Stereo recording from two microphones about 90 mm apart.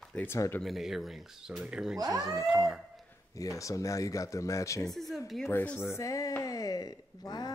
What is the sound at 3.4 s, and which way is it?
Speech, 40° left (ahead or behind).